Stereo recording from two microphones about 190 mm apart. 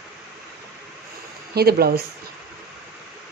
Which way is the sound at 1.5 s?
55° right (ahead or behind).